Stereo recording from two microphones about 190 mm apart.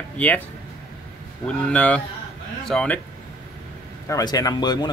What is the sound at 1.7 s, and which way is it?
Speech, 5° left (ahead or behind).